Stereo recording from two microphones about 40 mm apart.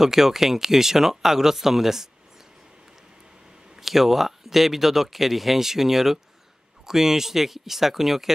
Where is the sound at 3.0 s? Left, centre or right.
Centre.